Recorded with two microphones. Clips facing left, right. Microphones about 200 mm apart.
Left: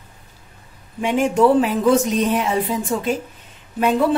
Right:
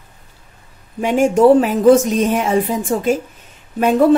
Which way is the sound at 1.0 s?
45° right (ahead or behind).